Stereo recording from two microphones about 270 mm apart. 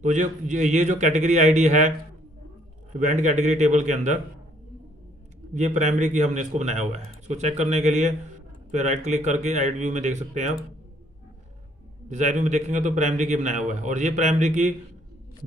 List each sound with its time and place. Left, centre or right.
0.0 s a man's voice: right
2.9 s a man's voice: right
5.5 s a man's voice: right
12.1 s a man's voice: right